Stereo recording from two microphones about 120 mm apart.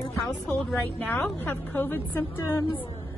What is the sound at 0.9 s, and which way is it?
A woman's voice, 15° left (ahead or behind).